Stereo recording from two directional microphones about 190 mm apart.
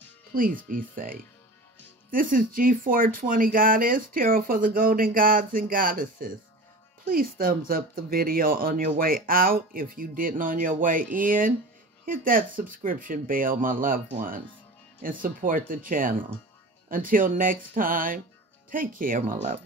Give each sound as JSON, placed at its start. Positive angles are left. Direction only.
{"t": 0.3, "sound": "speech", "side_deg": -45}